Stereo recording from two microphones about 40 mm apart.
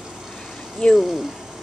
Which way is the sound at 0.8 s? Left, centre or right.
Left.